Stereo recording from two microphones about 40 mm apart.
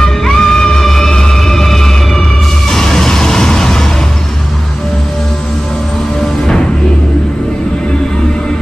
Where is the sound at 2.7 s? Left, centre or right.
Centre.